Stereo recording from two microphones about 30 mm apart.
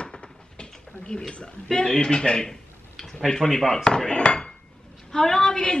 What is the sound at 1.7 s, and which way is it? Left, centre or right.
Speech, left.